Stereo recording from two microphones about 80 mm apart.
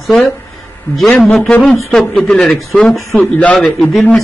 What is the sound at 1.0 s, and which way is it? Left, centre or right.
Speech, centre.